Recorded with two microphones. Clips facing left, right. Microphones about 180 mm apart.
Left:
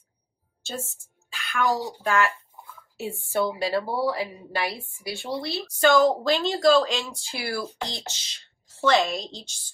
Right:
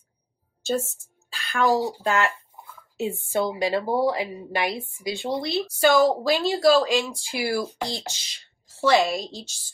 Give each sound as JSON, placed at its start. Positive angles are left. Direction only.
{"t": 1.3, "sound": "speech", "side_deg": -35}